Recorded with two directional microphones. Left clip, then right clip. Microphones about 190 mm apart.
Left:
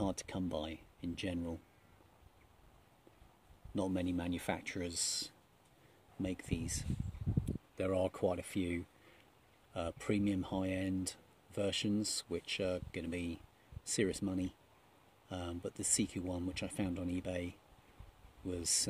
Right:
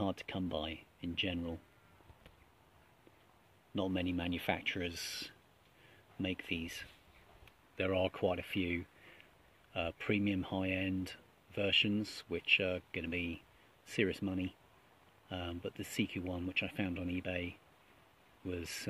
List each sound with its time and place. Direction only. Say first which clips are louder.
0.0 s speech: right 1 dB; 5° right (ahead or behind)
3.7 s speech: right 1 dB; 5° right (ahead or behind)
4.9 s speech: left 4 dB; 30° right (ahead or behind)
6.2 s speech: right 3 dB; 5° right (ahead or behind)
7.7 s speech: right 1 dB; 5° right (ahead or behind)